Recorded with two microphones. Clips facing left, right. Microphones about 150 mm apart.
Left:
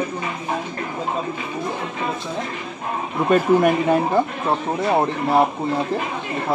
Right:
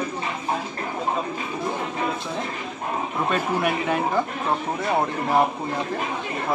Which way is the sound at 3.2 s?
45° left (ahead or behind).